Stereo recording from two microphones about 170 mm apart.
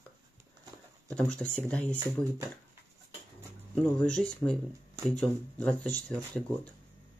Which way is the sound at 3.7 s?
5° left (ahead or behind).